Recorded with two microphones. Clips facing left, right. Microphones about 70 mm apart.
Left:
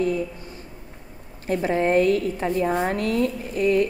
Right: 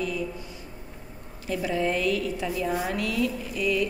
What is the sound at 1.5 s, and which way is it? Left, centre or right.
A woman's voice, left.